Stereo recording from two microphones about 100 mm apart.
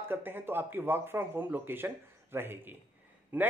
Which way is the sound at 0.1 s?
20° right (ahead or behind).